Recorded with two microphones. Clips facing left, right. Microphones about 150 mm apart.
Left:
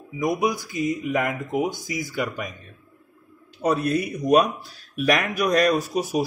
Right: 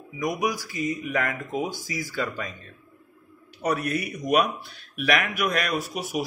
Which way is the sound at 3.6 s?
30° left (ahead or behind).